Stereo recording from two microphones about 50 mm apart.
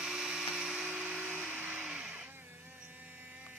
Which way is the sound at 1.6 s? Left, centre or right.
Right.